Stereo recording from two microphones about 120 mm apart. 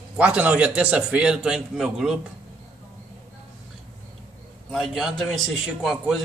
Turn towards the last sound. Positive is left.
turn(degrees=0)  # may be behind; listen again after turning